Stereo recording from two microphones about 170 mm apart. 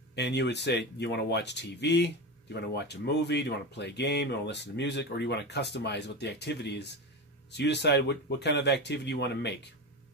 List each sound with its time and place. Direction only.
0.1 s speech: 85° left